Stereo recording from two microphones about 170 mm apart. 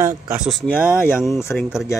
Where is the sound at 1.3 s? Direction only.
15° left (ahead or behind).